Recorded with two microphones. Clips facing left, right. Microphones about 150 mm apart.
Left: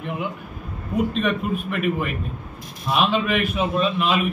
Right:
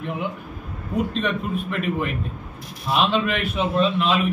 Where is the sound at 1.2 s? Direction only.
10° left (ahead or behind).